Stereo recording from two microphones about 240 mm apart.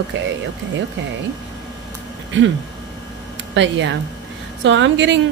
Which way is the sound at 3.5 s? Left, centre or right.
Right.